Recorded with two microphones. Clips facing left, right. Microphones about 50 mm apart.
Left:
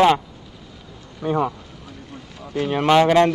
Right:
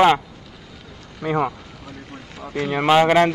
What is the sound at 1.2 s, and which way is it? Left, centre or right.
Speech, right.